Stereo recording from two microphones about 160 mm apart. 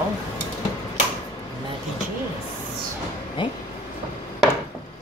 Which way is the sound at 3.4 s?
30° left (ahead or behind).